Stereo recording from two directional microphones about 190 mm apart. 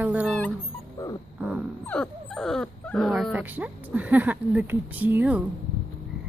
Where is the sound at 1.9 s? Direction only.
5° left (ahead or behind).